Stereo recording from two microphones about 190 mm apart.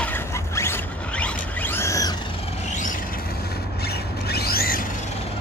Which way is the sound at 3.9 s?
55° left (ahead or behind).